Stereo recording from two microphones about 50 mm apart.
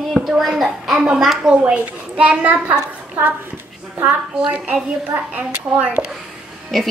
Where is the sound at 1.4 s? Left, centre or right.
Right.